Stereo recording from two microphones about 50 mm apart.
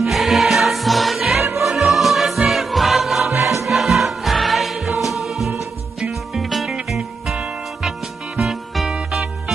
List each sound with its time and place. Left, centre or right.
0.0 s music: centre
3.3 s music: right
3.6 s music: centre
8.4 s music: centre